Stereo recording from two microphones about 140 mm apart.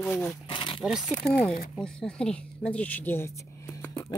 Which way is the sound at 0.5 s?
35° left (ahead or behind).